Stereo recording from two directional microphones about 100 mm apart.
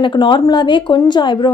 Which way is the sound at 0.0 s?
50° left (ahead or behind).